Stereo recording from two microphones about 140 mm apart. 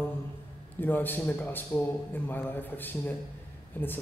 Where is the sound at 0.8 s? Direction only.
15° left (ahead or behind).